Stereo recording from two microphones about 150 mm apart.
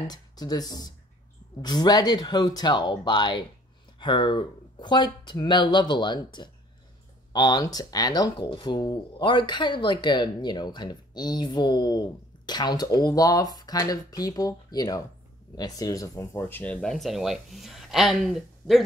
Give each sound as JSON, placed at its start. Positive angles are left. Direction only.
{"t": 0.0, "sound": "speech", "side_deg": 25}